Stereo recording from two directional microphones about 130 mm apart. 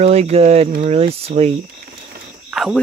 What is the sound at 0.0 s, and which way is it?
Speech, 55° right (ahead or behind).